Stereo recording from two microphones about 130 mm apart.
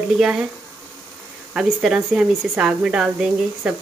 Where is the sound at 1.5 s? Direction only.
5° right (ahead or behind).